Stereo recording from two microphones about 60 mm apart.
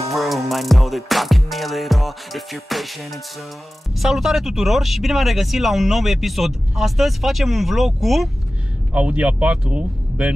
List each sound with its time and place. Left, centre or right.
0.1 s music: centre
3.9 s speech: centre
8.9 s speech: centre